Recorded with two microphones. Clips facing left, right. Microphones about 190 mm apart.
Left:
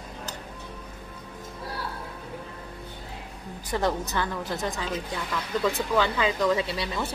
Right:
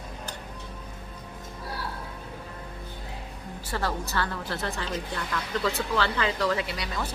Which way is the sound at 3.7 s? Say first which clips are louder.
Left 4 dB; 20° left (ahead or behind).